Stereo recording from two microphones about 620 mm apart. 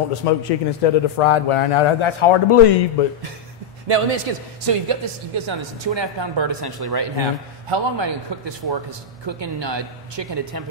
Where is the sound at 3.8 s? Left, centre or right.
Right.